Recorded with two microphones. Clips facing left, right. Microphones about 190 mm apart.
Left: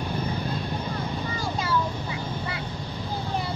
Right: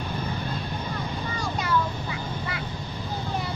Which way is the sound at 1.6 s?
25° left (ahead or behind).